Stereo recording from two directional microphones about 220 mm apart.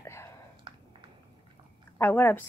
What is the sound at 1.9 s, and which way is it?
Speech, 10° left (ahead or behind).